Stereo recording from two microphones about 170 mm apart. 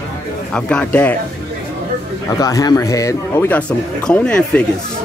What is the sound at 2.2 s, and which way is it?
Speech, 20° left (ahead or behind).